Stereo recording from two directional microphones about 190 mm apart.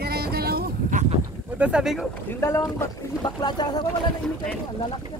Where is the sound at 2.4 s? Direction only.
15° left (ahead or behind).